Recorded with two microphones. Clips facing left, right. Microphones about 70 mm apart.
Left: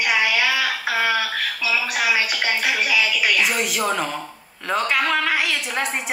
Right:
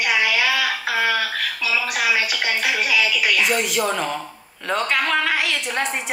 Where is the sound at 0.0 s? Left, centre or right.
Centre.